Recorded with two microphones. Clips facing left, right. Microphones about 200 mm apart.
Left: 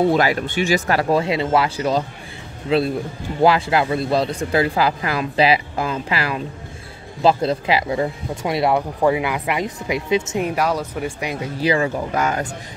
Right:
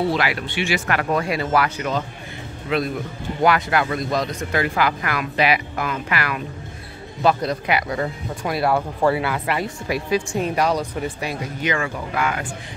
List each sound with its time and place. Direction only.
0.1 s speech: 40° left (ahead or behind); by 10.5 s 20° left (ahead or behind)
10.5 s speech: 5° left (ahead or behind)
11.6 s speech: 35° left (ahead or behind)